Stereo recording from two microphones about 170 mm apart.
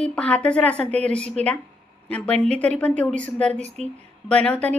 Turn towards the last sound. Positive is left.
turn(degrees=5)  # may be behind; listen again after turning